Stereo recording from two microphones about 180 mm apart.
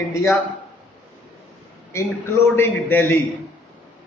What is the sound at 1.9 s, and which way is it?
A man's voice, 15° left (ahead or behind).